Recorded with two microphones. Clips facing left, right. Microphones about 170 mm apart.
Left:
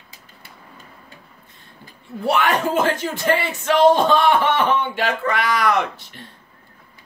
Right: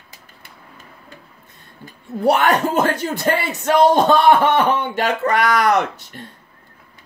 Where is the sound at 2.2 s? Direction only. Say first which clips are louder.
Right 4 dB; 40° right (ahead or behind).